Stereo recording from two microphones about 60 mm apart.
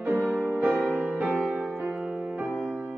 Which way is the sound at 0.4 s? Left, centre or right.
Right.